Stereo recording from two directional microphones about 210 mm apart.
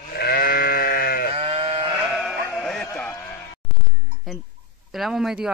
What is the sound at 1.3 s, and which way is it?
Sheep, 25° right (ahead or behind).